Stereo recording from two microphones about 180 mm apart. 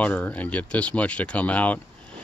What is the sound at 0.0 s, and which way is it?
Speech, 10° left (ahead or behind).